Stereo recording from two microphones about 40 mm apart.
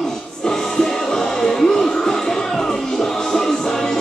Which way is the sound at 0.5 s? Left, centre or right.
Centre.